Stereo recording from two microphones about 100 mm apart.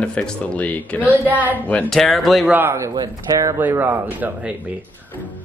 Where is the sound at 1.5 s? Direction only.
15° left (ahead or behind).